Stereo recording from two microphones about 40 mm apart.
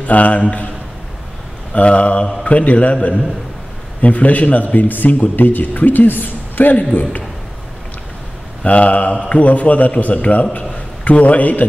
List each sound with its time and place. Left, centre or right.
0.0 s a man's voice: left
1.7 s a man's voice: left
8.6 s a man's voice: left